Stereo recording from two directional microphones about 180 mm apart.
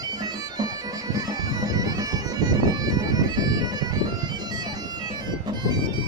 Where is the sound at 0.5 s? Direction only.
20° right (ahead or behind).